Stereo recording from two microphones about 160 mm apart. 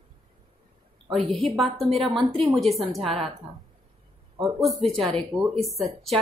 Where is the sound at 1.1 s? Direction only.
Centre (ahead or behind).